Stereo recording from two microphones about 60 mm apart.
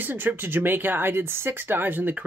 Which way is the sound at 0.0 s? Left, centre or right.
Right.